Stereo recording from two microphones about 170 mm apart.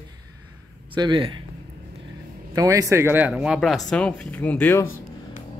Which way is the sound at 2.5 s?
20° right (ahead or behind).